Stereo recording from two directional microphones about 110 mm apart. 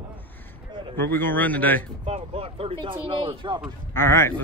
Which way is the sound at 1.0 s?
20° left (ahead or behind).